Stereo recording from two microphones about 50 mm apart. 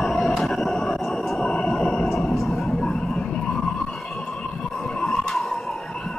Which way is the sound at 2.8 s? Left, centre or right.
Centre.